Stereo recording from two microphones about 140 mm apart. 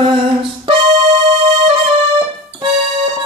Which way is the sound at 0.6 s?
50° right (ahead or behind).